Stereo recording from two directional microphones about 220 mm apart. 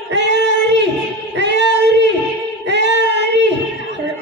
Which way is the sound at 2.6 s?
50° right (ahead or behind).